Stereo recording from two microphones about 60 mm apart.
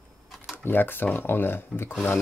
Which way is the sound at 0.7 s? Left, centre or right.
Left.